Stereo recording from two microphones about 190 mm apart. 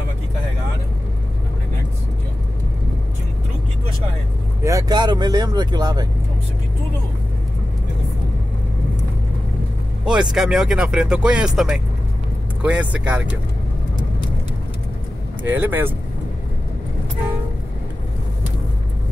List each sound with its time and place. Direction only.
4.6 s speech: 20° right (ahead or behind)
10.3 s speech: centre (ahead or behind)
15.4 s speech: 10° right (ahead or behind)